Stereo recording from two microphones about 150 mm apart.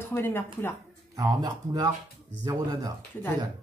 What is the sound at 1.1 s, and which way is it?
Speech, 25° right (ahead or behind).